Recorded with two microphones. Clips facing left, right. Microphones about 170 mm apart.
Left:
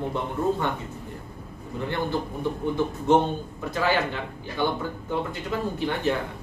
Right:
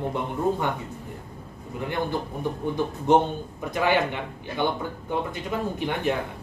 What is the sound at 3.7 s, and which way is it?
Speech, 20° right (ahead or behind).